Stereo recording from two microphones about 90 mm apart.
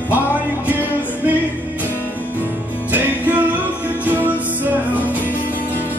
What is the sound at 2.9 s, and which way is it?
Music, 20° right (ahead or behind).